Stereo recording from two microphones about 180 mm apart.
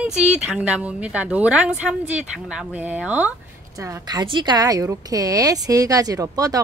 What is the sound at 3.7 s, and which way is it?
A woman's voice, 20° right (ahead or behind).